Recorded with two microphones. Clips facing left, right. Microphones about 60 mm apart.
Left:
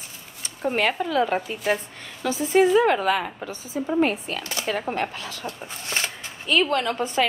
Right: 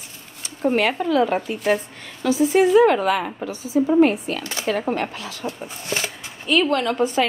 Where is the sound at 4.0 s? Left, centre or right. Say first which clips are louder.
Right 6 dB; right.